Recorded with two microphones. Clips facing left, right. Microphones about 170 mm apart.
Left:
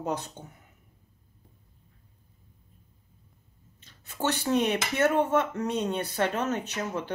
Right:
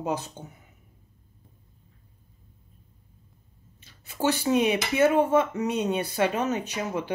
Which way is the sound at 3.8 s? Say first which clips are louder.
Right 4 dB; 10° right (ahead or behind).